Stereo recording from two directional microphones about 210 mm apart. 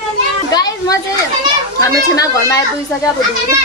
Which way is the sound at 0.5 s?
20° left (ahead or behind).